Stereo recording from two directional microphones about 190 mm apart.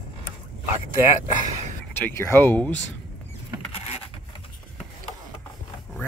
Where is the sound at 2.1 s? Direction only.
10° left (ahead or behind).